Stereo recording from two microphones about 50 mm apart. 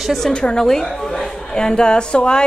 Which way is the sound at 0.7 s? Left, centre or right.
Centre.